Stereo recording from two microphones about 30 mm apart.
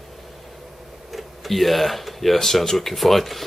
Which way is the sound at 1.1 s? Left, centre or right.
Centre.